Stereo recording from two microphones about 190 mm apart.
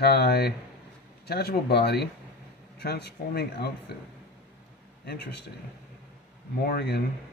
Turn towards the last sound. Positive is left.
turn(degrees=55)  # may be behind; listen again after turning